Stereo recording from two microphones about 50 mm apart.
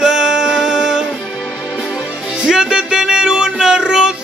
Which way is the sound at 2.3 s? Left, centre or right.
Centre.